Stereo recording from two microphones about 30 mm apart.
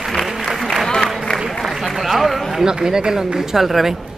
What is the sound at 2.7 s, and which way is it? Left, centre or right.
Speech, right.